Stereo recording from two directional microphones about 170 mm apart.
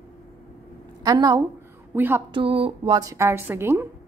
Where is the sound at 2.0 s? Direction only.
10° right (ahead or behind).